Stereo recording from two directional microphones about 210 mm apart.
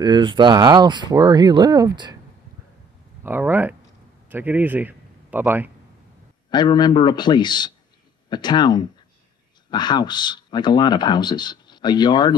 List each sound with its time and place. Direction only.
0.0 s speech: 20° right (ahead or behind)
3.3 s a man's voice: 10° right (ahead or behind)
6.5 s speech: 20° left (ahead or behind)